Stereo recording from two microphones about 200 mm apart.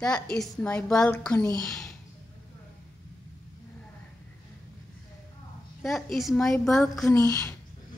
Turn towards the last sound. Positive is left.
turn(degrees=15)  # may be behind; listen again after turning